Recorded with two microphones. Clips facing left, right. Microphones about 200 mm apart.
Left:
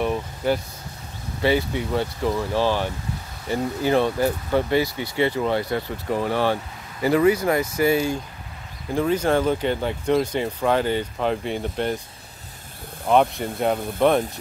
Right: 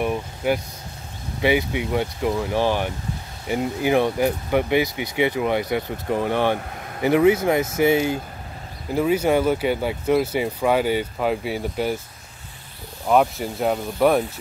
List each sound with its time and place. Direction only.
0.0 s vehicle: 10° right (ahead or behind)
1.4 s speech: 15° right (ahead or behind)
6.7 s vehicle: 60° right (ahead or behind)
7.0 s speech: 20° right (ahead or behind)
8.9 s speech: 10° right (ahead or behind)
13.0 s speech: centre (ahead or behind)